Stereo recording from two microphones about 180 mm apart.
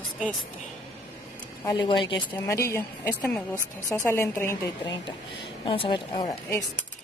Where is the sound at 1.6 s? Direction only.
25° left (ahead or behind).